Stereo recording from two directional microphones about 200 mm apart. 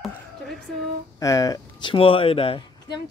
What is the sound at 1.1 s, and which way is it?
Speech, 15° left (ahead or behind).